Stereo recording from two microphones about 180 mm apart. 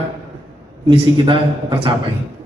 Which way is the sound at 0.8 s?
25° right (ahead or behind).